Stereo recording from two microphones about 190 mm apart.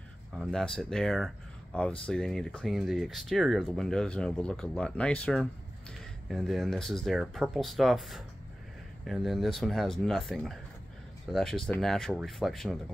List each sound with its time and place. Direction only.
0.4 s speech: centre (ahead or behind)